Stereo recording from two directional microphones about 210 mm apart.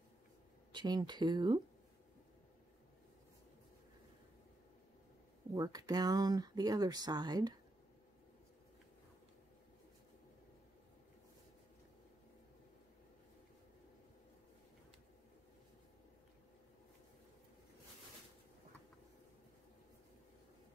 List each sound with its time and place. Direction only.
0.7 s speech: 20° right (ahead or behind)
5.5 s speech: 15° right (ahead or behind)